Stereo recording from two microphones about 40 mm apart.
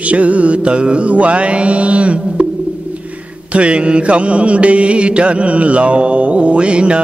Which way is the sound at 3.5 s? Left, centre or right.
Right.